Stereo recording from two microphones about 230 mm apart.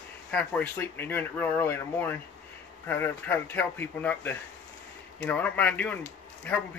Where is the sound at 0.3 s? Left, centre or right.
Centre.